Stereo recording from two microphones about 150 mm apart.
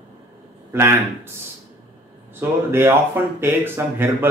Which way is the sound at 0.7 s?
15° right (ahead or behind).